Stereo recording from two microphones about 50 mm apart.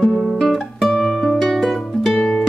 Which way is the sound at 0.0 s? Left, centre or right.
Centre.